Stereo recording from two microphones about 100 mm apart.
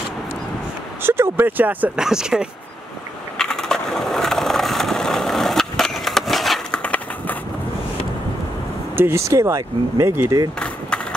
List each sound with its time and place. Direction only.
1.0 s speech: 25° right (ahead or behind)
2.0 s speech: 5° right (ahead or behind)
3.3 s skateboard: 5° left (ahead or behind)
6.8 s a sound: 15° left (ahead or behind)
8.9 s speech: 25° right (ahead or behind)